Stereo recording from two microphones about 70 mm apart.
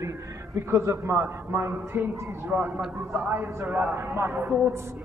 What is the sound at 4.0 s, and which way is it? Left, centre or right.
Speech, right.